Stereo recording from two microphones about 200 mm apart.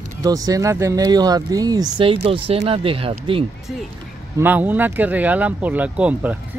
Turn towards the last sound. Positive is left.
turn(degrees=-5)  # may be behind; listen again after turning